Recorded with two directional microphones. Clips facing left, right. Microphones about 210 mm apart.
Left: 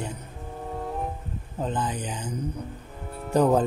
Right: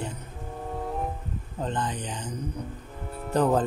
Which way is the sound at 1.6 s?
5° left (ahead or behind).